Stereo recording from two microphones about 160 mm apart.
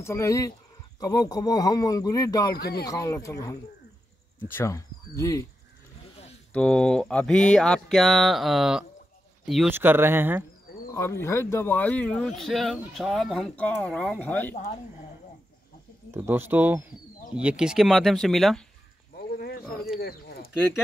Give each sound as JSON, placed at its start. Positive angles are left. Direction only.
{"t": 0.0, "sound": "speech", "side_deg": 20}
{"t": 2.5, "sound": "speech", "side_deg": 80}
{"t": 2.8, "sound": "speech", "side_deg": 20}
{"t": 6.5, "sound": "speech", "side_deg": 5}
{"t": 9.7, "sound": "speech", "side_deg": -15}
{"t": 10.9, "sound": "speech", "side_deg": 15}
{"t": 16.1, "sound": "speech", "side_deg": -15}
{"t": 19.1, "sound": "wild animals", "side_deg": 75}
{"t": 20.0, "sound": "a sound", "side_deg": 75}